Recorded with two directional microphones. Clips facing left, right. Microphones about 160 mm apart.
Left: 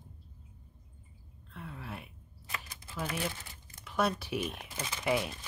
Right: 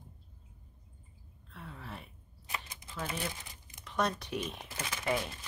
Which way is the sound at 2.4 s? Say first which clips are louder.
Right 1 dB; 15° right (ahead or behind).